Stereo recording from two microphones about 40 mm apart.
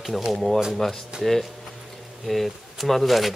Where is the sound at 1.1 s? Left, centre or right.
Right.